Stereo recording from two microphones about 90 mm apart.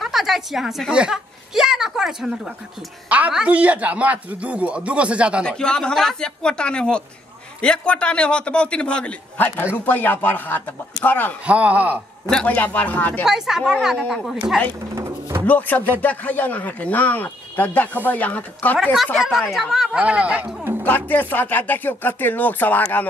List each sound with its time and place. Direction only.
0.0 s a woman's voice: 5° right (ahead or behind)
5.4 s a man's voice: 10° left (ahead or behind)
11.4 s a man's voice: 15° right (ahead or behind)
12.3 s a man's voice: 10° left (ahead or behind)
12.5 s speech: 20° left (ahead or behind)
13.2 s speech: 5° right (ahead or behind)
15.0 s music: 30° right (ahead or behind)
15.4 s speech: 20° left (ahead or behind)
19.1 s speech: centre (ahead or behind)
20.0 s a man's voice: 15° right (ahead or behind)
20.8 s speech: 20° left (ahead or behind)